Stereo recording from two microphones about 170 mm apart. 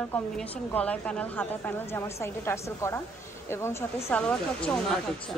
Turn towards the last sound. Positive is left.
turn(degrees=5)  # may be behind; listen again after turning